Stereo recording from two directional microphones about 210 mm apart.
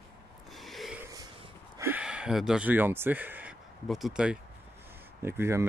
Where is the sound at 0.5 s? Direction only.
Centre (ahead or behind).